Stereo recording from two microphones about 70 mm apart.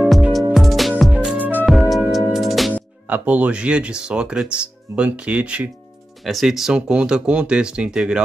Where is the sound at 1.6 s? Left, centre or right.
Centre.